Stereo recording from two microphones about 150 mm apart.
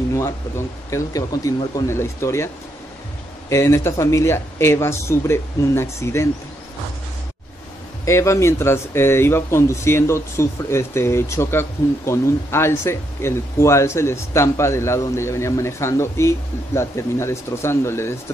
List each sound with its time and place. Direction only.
0.1 s speech: 20° left (ahead or behind)
8.0 s speech: 20° left (ahead or behind)